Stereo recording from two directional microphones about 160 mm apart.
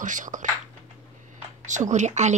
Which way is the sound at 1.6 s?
50° right (ahead or behind).